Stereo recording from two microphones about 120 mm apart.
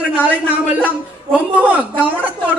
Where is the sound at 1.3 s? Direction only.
10° right (ahead or behind).